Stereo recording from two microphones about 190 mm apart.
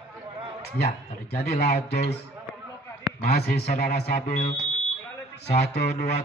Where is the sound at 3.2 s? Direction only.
55° left (ahead or behind).